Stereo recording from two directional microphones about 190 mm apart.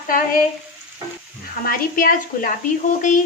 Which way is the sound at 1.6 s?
50° left (ahead or behind).